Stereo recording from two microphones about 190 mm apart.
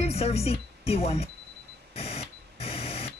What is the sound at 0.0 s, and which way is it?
Speech, 35° left (ahead or behind).